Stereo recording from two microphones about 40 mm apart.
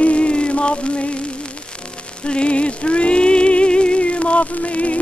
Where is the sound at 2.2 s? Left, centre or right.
Left.